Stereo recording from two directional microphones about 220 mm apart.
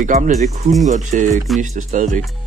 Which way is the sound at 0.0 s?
35° right (ahead or behind).